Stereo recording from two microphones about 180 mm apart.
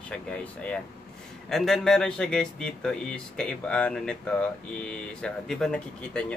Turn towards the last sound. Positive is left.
turn(degrees=5)  # may be behind; listen again after turning